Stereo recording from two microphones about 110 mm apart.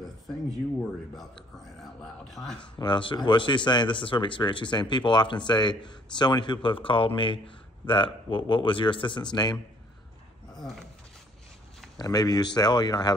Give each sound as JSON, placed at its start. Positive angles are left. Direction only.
{"t": 1.8, "sound": "speech", "side_deg": 0}
{"t": 2.8, "sound": "speech", "side_deg": 45}
{"t": 10.6, "sound": "speech", "side_deg": 5}
{"t": 12.0, "sound": "speech", "side_deg": 35}